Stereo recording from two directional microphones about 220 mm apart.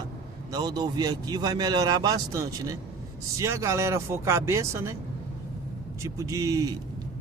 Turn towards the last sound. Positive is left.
turn(degrees=-15)  # may be behind; listen again after turning